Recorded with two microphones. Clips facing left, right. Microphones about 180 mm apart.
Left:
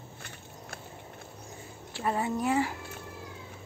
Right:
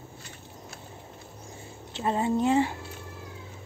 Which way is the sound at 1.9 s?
20° right (ahead or behind).